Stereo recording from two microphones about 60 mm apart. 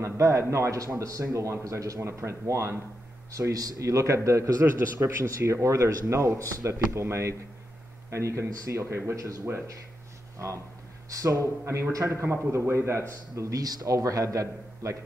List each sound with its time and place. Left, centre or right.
0.0 s a man's voice: right
2.0 s a man's voice: right
8.5 s a man's voice: right
11.1 s speech: right
11.6 s a man's voice: right